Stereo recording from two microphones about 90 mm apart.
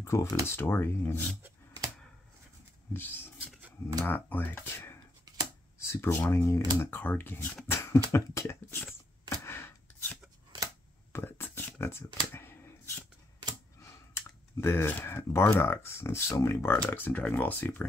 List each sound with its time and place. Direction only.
0.0 s speech: 30° left (ahead or behind)
2.9 s speech: 25° left (ahead or behind)
9.4 s a sound: 25° left (ahead or behind)
11.1 s a sound: 25° left (ahead or behind)
13.8 s clicking: 30° left (ahead or behind)
15.5 s speech: 30° left (ahead or behind)